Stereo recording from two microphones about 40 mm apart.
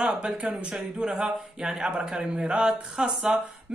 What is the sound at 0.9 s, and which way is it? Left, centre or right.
A man's voice, centre.